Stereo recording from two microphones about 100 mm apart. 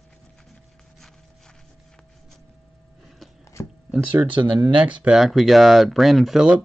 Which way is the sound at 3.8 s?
15° right (ahead or behind).